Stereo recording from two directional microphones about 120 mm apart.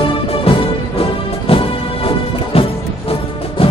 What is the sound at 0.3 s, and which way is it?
Music, 50° left (ahead or behind).